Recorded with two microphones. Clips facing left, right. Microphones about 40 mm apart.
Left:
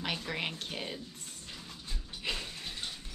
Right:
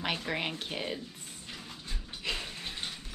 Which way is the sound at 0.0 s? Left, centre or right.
Centre.